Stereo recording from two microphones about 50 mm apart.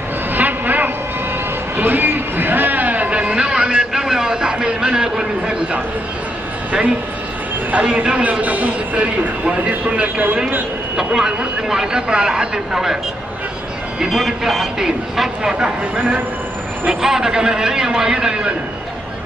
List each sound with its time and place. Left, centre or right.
0.3 s vehicle: right
1.8 s a sound: right; by 5.6 s centre
7.7 s speech: right
11.1 s speech: centre
14.1 s speech: centre
17.0 s speech: centre